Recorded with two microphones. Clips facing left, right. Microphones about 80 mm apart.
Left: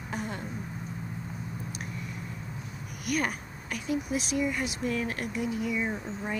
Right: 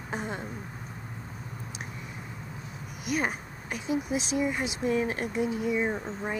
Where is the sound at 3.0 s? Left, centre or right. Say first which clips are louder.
Even; right.